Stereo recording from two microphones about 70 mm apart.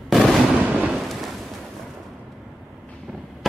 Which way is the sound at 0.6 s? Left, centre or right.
Right.